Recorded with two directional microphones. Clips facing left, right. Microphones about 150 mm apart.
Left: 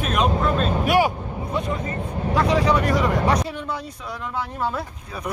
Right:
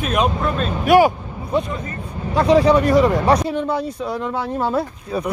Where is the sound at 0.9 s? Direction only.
50° right (ahead or behind).